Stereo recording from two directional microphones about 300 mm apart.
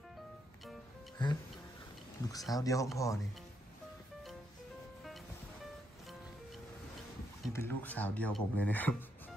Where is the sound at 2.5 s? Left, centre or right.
Centre.